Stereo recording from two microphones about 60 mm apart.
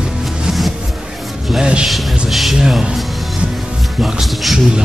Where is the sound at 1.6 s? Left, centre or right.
Centre.